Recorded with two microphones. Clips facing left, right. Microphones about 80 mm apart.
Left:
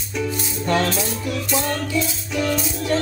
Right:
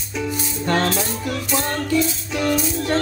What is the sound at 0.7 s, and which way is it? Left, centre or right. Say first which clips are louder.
Music: even; right.